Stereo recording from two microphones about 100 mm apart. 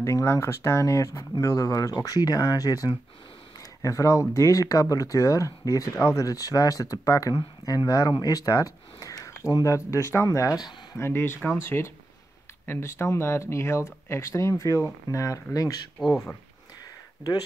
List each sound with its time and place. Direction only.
0.0 s speech: 30° left (ahead or behind)
11.0 s speech: 25° left (ahead or behind)
16.0 s speech: centre (ahead or behind)